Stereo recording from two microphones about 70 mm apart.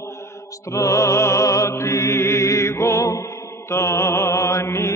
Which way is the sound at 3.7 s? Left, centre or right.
Left.